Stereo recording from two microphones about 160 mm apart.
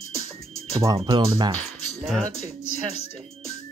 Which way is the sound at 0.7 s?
25° right (ahead or behind).